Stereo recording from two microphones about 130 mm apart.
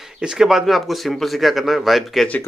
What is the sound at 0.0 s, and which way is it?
Speech, 5° right (ahead or behind).